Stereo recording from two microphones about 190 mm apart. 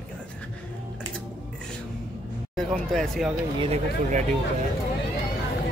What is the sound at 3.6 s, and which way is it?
Speech, 35° right (ahead or behind).